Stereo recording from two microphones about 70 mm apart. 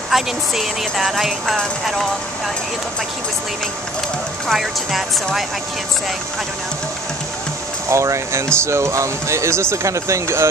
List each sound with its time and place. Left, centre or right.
0.1 s speech: centre
4.5 s speech: centre
7.9 s speech: right